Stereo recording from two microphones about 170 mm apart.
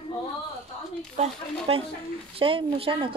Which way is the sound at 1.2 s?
35° right (ahead or behind).